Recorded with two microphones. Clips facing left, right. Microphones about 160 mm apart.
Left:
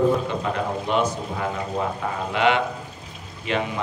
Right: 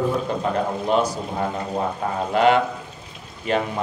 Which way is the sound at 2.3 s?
40° right (ahead or behind).